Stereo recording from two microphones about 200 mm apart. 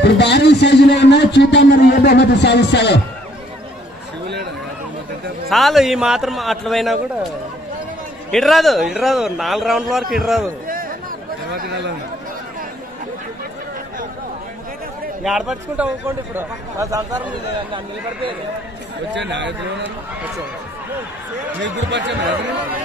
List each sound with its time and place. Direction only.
0.0 s a man's voice: 60° left (ahead or behind)
5.5 s speech: centre (ahead or behind)
8.3 s speech: centre (ahead or behind)
10.7 s a sound: 45° right (ahead or behind)
11.5 s speech: 45° right (ahead or behind)
15.2 s a man's voice: 5° right (ahead or behind)
19.1 s a man's voice: 60° right (ahead or behind)
21.6 s a man's voice: 65° right (ahead or behind)